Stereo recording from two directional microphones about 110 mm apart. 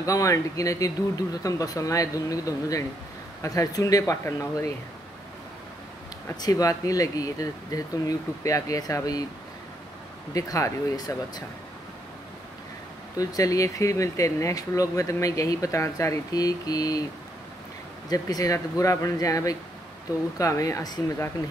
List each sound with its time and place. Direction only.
0.0 s speech: 30° left (ahead or behind)
6.4 s speech: 35° left (ahead or behind)
10.3 s speech: 30° left (ahead or behind)
13.2 s speech: 35° left (ahead or behind)
18.1 s speech: 35° left (ahead or behind)